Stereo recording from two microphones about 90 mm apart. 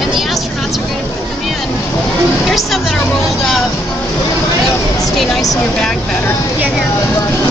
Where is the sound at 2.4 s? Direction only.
Centre (ahead or behind).